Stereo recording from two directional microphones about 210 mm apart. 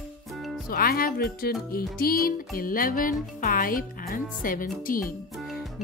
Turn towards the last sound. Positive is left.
turn(degrees=0)  # may be behind; listen again after turning